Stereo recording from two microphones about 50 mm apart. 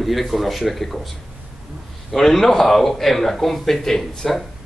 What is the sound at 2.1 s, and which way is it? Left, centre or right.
Speech, centre.